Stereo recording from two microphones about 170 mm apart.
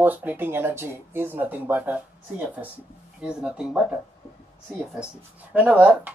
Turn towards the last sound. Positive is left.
turn(degrees=-10)  # may be behind; listen again after turning